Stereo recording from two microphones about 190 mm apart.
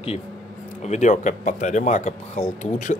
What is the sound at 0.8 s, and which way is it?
A man's voice, 40° left (ahead or behind).